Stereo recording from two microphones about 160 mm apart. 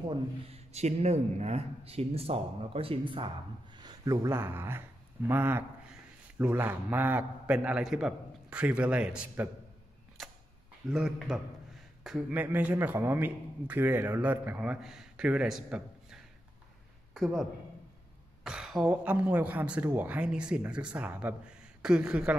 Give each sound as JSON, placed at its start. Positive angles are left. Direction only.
{"t": 0.1, "sound": "speech", "side_deg": -40}
{"t": 3.7, "sound": "a man's voice", "side_deg": -25}
{"t": 10.2, "sound": "camera", "side_deg": 0}
{"t": 10.9, "sound": "a man's voice", "side_deg": -5}